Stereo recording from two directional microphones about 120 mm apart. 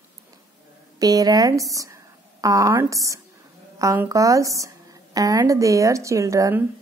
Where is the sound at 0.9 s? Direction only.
30° right (ahead or behind).